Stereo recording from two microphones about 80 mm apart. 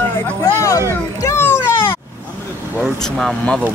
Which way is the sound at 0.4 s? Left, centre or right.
Left.